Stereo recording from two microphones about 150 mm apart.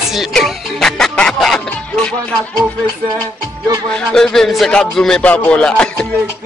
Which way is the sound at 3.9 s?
5° left (ahead or behind).